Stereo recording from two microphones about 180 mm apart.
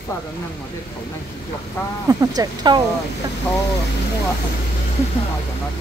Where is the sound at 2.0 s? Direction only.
20° right (ahead or behind).